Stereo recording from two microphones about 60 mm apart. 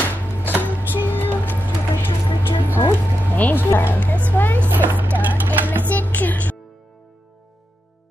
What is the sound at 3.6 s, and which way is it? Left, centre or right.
Music, left.